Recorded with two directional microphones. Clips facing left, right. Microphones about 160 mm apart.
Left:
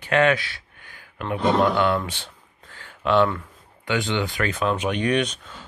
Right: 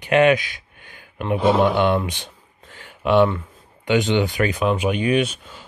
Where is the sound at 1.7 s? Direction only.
20° right (ahead or behind).